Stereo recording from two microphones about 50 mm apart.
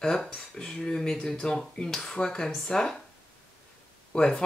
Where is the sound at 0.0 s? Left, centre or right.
Centre.